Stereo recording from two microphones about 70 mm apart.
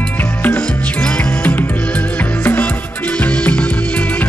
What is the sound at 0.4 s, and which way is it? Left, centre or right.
Music, left.